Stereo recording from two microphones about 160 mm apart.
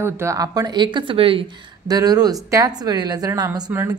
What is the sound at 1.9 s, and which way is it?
A woman's voice, 25° right (ahead or behind).